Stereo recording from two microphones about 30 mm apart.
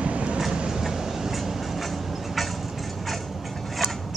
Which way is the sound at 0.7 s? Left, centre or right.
Centre.